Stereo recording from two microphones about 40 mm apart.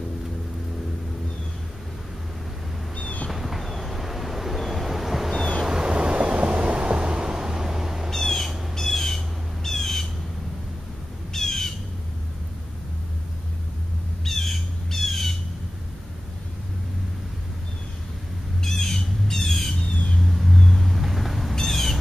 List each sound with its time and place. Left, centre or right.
3.3 s vehicle: centre
5.7 s a sound: right
8.1 s bird: centre
8.7 s squawk: centre
11.3 s squawk: centre
14.2 s squawk: centre
18.6 s squawk: centre
20.2 s cat: centre